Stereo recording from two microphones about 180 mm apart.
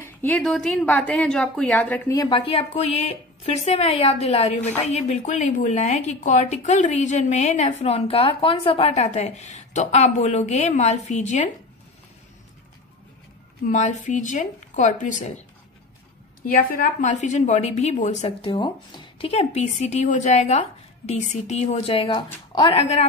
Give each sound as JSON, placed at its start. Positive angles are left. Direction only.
{"t": 0.0, "sound": "a woman's voice", "side_deg": 10}
{"t": 13.7, "sound": "speech", "side_deg": 40}
{"t": 16.5, "sound": "a woman's voice", "side_deg": 50}